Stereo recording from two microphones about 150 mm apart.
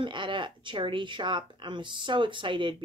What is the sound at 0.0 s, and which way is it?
Speech, 35° right (ahead or behind).